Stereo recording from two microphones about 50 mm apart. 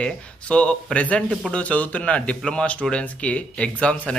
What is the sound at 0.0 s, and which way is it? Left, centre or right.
A man's voice, left.